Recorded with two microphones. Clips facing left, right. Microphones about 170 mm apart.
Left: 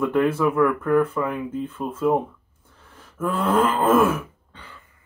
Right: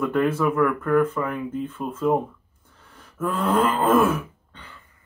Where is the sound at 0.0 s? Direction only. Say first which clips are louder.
Left 1 dB; 10° left (ahead or behind).